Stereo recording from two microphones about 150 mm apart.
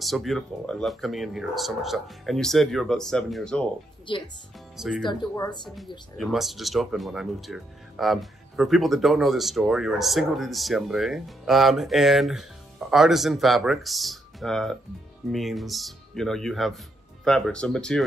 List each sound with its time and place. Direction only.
0.0 s speech: centre (ahead or behind)
4.1 s speech: 35° left (ahead or behind)
4.7 s speech: centre (ahead or behind)
5.0 s speech: 25° left (ahead or behind)
6.1 s speech: centre (ahead or behind)